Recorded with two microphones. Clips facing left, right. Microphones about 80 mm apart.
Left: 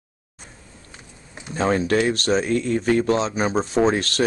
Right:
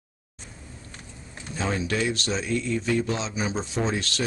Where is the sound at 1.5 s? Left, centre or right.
Left.